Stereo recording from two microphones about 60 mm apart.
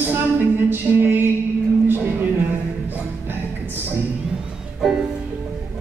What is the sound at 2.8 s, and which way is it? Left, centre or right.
Music, right.